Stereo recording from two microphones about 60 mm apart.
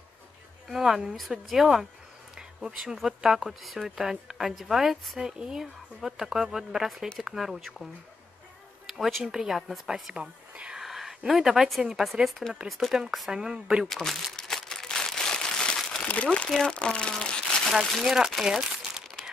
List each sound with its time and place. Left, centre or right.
0.7 s speech: centre
10.1 s speech: centre
10.8 s speech: centre
13.8 s speech: centre
14.3 s a sound: centre
16.0 s speech: centre
16.4 s speech: centre
17.8 s speech: centre
18.4 s crumpling: centre